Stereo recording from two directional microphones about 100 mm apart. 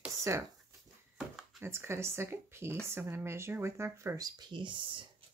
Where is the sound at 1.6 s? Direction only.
25° right (ahead or behind).